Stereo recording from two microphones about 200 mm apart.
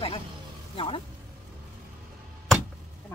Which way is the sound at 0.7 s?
25° left (ahead or behind).